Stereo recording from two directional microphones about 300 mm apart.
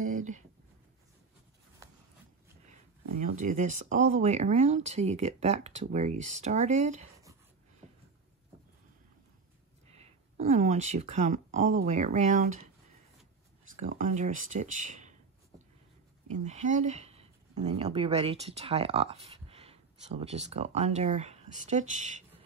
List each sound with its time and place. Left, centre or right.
0.1 s a sound: right
3.2 s speech: right
9.8 s speech: right
13.7 s speech: right
16.4 s speech: right